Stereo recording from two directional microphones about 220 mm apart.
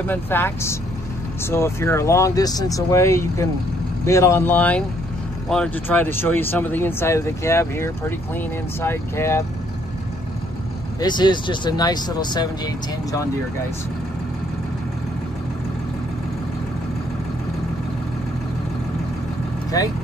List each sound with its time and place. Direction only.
0.0 s speech: 10° left (ahead or behind)
11.0 s speech: 20° left (ahead or behind)